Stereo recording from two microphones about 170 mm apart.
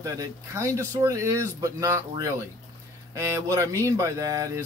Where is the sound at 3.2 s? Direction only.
15° right (ahead or behind).